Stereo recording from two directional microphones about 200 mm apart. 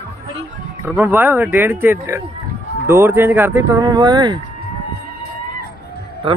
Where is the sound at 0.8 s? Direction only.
10° right (ahead or behind).